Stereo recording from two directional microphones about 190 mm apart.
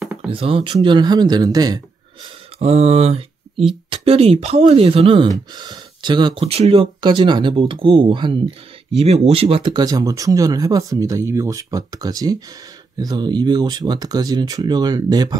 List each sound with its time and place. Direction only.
0.3 s speech: 30° right (ahead or behind)
2.6 s speech: 35° right (ahead or behind)